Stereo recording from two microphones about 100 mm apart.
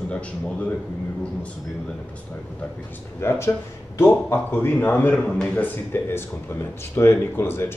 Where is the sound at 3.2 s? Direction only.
25° left (ahead or behind).